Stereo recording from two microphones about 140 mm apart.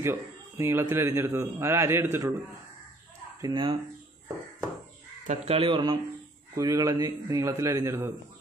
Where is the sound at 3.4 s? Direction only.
35° right (ahead or behind).